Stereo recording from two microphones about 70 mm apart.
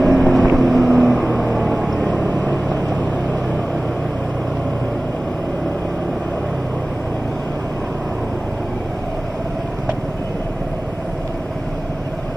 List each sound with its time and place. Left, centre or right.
0.0 s vehicle: centre
2.1 s vehicle: centre